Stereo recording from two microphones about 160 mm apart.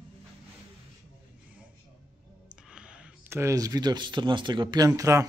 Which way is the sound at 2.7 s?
5° right (ahead or behind).